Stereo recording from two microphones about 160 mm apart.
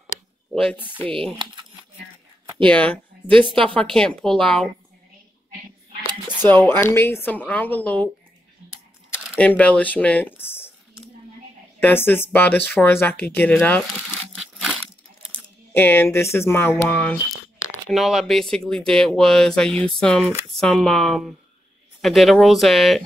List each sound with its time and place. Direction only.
1.4 s crumpling: 30° right (ahead or behind)
2.7 s speech: 10° left (ahead or behind)
6.4 s speech: 15° left (ahead or behind)
9.4 s speech: 10° left (ahead or behind)
11.8 s speech: 15° left (ahead or behind)
15.3 s speech: 15° left (ahead or behind)